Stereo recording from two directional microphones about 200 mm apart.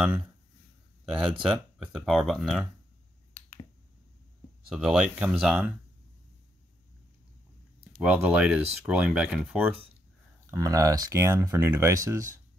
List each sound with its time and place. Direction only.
1.4 s speech: 5° right (ahead or behind)
4.7 s speech: 5° right (ahead or behind)
8.0 s speech: 5° right (ahead or behind)
10.5 s speech: 15° right (ahead or behind)